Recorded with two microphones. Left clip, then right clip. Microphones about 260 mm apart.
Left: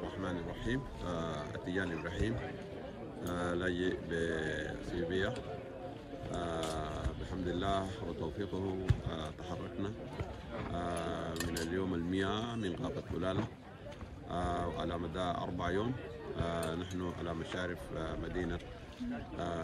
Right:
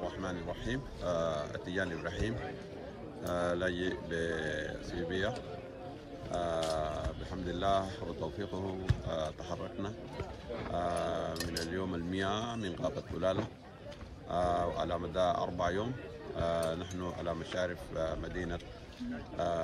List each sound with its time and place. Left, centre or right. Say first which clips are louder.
1.0 s a man's voice: right 9 dB; centre
4.1 s speech: right 1 dB; right
4.6 s speech: even; centre
6.3 s a man's voice: right 5 dB; centre
10.6 s speech: right 5 dB; centre
19.3 s a man's voice: right 7 dB; centre